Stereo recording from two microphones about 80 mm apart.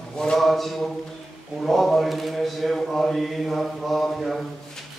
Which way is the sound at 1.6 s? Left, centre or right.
Centre.